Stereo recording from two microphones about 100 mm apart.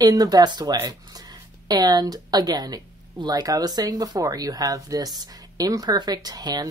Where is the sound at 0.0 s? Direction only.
40° right (ahead or behind).